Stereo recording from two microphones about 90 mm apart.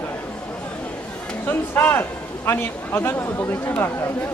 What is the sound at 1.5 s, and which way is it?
A man's voice, 25° left (ahead or behind).